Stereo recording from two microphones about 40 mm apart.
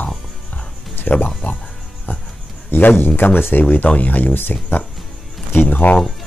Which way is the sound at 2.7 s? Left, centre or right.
Left.